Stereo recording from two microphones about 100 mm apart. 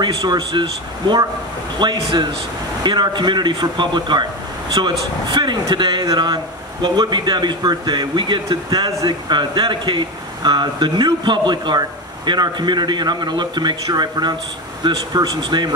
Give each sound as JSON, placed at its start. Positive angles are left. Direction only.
{"t": 0.0, "sound": "a man's voice", "side_deg": -45}